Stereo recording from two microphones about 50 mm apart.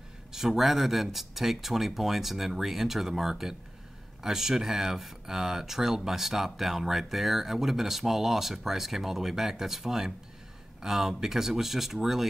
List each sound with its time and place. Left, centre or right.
0.3 s speech: centre